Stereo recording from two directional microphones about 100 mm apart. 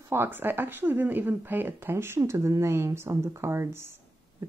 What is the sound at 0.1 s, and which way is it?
Speech, 20° right (ahead or behind).